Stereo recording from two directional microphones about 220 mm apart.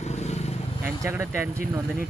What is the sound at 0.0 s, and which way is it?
Vehicle, 30° left (ahead or behind).